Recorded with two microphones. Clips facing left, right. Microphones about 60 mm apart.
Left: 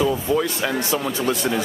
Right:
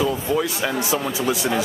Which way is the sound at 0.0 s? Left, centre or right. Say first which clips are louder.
Left 1 dB; centre.